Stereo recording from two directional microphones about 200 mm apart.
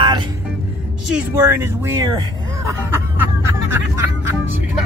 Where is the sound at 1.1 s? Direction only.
10° right (ahead or behind).